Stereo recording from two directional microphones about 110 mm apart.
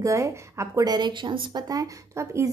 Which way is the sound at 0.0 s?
30° right (ahead or behind).